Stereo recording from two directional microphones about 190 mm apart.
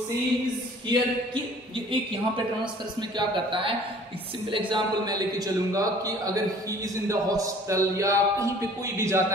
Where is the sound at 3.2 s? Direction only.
25° right (ahead or behind).